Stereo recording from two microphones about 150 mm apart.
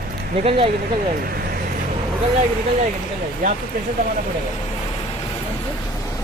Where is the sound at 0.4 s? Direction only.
40° right (ahead or behind).